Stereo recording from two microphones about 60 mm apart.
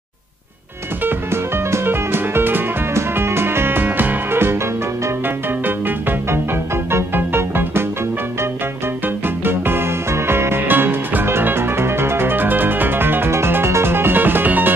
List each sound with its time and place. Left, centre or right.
1.0 s music: right
5.9 s music: right
9.4 s music: right